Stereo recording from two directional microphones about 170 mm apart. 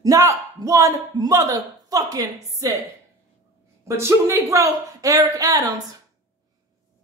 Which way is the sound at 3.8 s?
15° right (ahead or behind).